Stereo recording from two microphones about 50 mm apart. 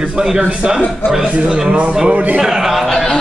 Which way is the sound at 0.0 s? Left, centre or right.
Centre.